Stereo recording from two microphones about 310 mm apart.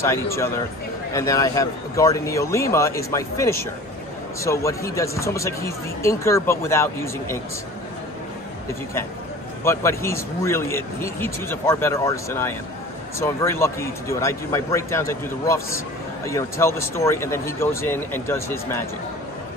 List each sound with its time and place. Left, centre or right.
0.0 s speech: centre
9.7 s speech: centre